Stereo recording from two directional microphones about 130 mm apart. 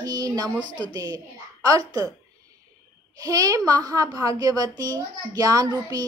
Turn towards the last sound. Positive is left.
turn(degrees=-30)  # may be behind; listen again after turning